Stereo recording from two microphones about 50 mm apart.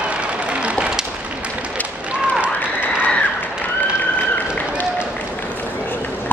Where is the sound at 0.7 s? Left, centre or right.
Centre.